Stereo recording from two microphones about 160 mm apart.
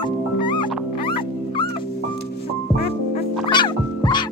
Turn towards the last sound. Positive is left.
turn(degrees=30)  # may be behind; listen again after turning